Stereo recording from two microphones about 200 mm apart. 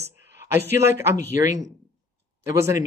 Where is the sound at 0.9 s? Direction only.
15° right (ahead or behind).